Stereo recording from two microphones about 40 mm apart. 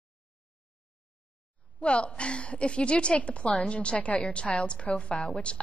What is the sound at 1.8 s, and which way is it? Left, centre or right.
A woman's voice, left.